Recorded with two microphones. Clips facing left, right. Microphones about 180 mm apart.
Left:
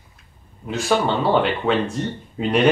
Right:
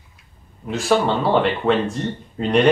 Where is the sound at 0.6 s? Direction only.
Centre (ahead or behind).